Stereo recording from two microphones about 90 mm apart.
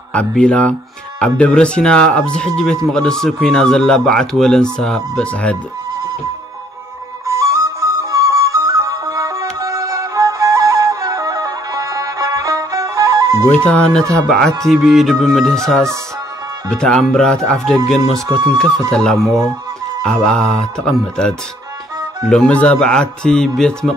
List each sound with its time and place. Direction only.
0.4 s speech: 10° left (ahead or behind)
7.2 s music: 35° right (ahead or behind)
13.7 s speech: 10° left (ahead or behind)
14.6 s music: centre (ahead or behind)
16.7 s speech: 10° left (ahead or behind)
19.1 s speech: 35° right (ahead or behind)
20.1 s speech: 10° left (ahead or behind)